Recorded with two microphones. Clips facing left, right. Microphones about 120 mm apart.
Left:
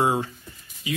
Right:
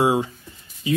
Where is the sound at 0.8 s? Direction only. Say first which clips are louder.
Right 7 dB; 30° right (ahead or behind).